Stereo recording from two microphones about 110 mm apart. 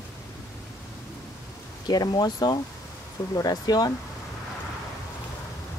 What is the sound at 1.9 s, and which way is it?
Speech, 35° left (ahead or behind).